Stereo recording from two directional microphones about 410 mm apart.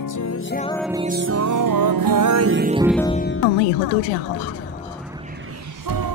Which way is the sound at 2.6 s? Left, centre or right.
Centre.